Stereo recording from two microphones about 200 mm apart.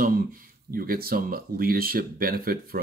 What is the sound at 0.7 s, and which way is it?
Speech, 45° right (ahead or behind).